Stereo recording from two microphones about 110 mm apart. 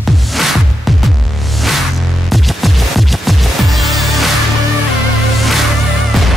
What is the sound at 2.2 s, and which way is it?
Music, centre (ahead or behind).